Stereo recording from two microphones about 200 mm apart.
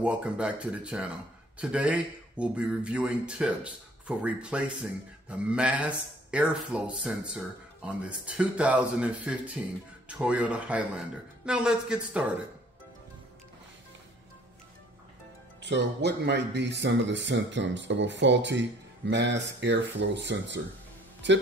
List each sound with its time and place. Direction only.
0.0 s a man's voice: 5° right (ahead or behind)
15.6 s speech: 55° right (ahead or behind)